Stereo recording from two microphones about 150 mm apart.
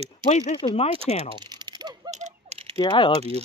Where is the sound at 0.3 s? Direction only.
50° left (ahead or behind).